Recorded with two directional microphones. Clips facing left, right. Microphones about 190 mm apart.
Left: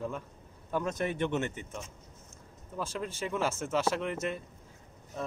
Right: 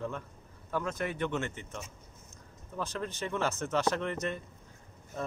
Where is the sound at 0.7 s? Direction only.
20° left (ahead or behind).